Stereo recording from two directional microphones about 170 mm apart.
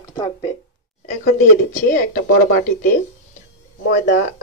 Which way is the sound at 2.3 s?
55° left (ahead or behind).